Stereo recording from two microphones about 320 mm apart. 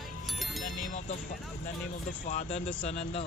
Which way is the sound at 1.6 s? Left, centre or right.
Left.